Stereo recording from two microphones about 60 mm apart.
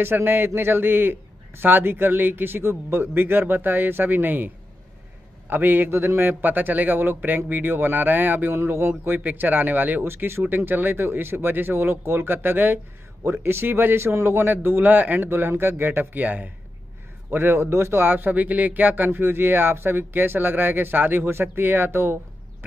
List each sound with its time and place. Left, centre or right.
0.0 s speech: right
5.5 s speech: right
9.2 s speech: right
17.6 s speech: right